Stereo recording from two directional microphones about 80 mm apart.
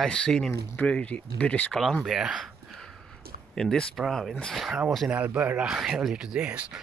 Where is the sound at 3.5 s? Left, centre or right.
Centre.